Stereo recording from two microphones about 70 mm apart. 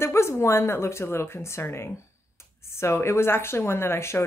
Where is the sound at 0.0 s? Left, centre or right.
Left.